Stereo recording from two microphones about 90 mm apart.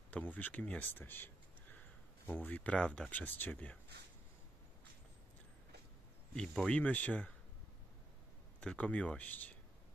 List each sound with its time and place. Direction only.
0.1 s speech: 20° left (ahead or behind)
6.3 s speech: 5° left (ahead or behind)
8.5 s speech: 15° left (ahead or behind)